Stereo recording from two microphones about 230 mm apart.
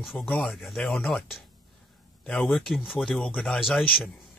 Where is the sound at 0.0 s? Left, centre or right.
Centre.